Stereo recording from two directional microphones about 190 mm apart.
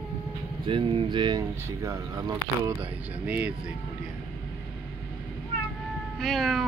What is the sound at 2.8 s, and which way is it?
Speech, 10° right (ahead or behind).